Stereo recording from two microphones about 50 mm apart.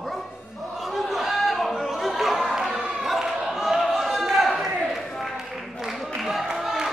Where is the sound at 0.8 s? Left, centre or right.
Centre.